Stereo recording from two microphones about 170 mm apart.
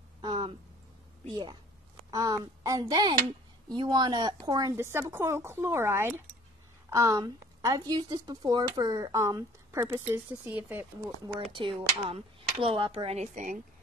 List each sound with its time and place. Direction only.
0.2 s a sound: 25° right (ahead or behind)
2.0 s speech: 20° right (ahead or behind)
11.2 s speech: 30° right (ahead or behind); by 13.6 s 45° right (ahead or behind)